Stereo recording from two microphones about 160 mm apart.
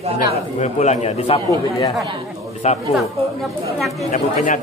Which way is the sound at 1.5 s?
20° left (ahead or behind).